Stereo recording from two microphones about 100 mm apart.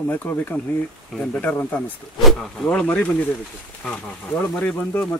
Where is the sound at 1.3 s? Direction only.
15° left (ahead or behind).